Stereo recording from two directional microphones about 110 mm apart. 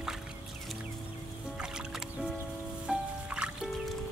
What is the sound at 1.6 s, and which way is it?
Music, 5° right (ahead or behind).